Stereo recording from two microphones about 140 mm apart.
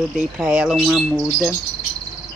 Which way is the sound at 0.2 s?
10° right (ahead or behind).